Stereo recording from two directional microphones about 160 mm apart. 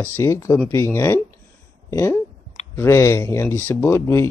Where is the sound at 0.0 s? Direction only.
15° left (ahead or behind).